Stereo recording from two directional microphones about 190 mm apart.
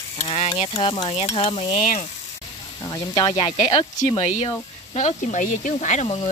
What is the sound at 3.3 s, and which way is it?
Speech, 30° left (ahead or behind).